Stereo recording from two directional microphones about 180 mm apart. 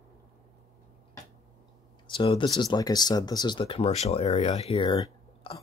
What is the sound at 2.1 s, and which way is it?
Speech, 30° left (ahead or behind).